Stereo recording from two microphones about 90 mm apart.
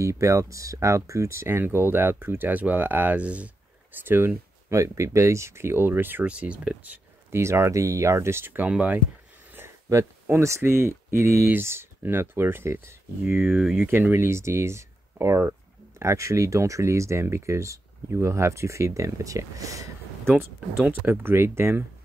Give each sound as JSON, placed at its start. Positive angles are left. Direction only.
{"t": 0.0, "sound": "speech", "side_deg": -35}
{"t": 7.3, "sound": "speech", "side_deg": -30}
{"t": 9.5, "sound": "speech", "side_deg": -25}
{"t": 20.8, "sound": "speech", "side_deg": -20}